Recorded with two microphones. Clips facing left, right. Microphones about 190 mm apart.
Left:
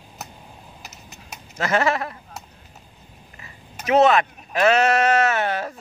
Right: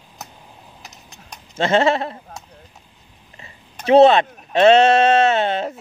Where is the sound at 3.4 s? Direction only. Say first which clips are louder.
Right 3 dB; 25° right (ahead or behind).